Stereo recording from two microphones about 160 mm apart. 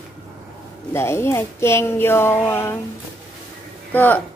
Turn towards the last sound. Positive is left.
turn(degrees=10)  # may be behind; listen again after turning